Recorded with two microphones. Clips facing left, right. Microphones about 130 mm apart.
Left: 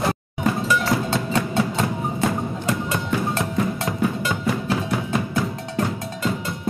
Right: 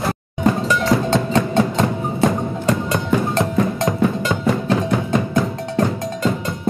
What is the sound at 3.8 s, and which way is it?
Music, 40° right (ahead or behind).